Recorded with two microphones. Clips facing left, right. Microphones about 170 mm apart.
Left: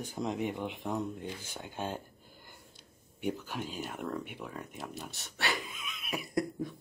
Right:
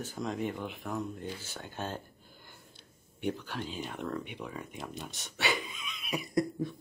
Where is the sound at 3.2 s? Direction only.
10° left (ahead or behind).